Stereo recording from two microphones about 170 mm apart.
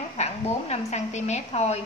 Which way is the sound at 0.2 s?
40° left (ahead or behind).